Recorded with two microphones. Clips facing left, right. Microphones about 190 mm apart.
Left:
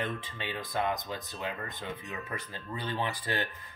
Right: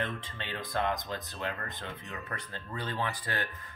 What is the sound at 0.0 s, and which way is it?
Speech, 10° left (ahead or behind).